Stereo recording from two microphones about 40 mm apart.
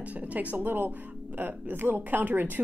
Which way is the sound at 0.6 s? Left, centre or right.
Right.